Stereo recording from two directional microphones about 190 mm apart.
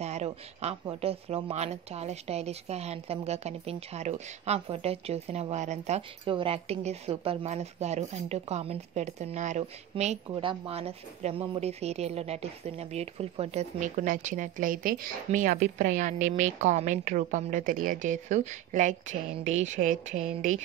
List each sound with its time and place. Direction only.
0.0 s speech: 35° right (ahead or behind)